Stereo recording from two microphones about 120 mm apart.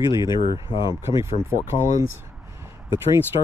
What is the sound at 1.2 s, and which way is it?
Speech, 25° right (ahead or behind).